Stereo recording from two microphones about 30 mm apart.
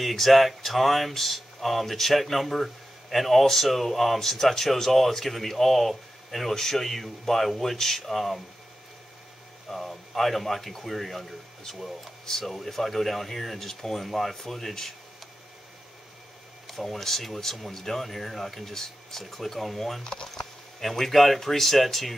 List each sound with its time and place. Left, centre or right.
0.1 s speech: centre
9.7 s speech: centre
16.6 s speech: centre
20.0 s speech: left
20.2 s a sound: centre
20.9 s speech: centre